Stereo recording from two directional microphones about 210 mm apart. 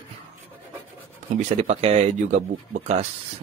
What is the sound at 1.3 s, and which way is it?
Speech, 30° right (ahead or behind).